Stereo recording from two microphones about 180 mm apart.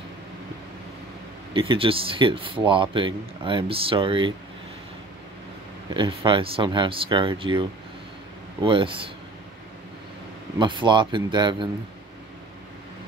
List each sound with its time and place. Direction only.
1.5 s speech: 30° right (ahead or behind)
5.9 s speech: 25° right (ahead or behind)
8.6 s speech: 30° right (ahead or behind)
10.6 s speech: 25° right (ahead or behind)